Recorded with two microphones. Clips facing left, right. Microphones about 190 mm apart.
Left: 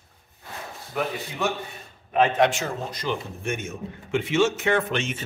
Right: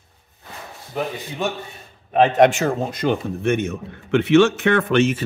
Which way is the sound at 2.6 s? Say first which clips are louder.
Right 9 dB; 60° right (ahead or behind).